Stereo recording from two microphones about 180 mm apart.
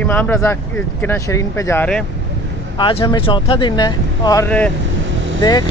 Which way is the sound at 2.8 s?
30° left (ahead or behind).